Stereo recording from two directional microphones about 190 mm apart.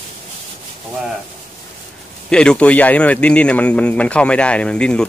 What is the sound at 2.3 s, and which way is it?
Speech, 5° left (ahead or behind).